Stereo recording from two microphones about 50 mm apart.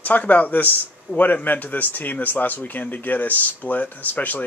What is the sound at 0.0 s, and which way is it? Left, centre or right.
Speech, left.